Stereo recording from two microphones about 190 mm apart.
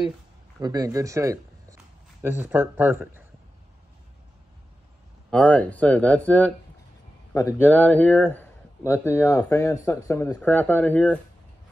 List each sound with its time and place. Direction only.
0.6 s speech: 20° right (ahead or behind)
5.3 s speech: 5° left (ahead or behind)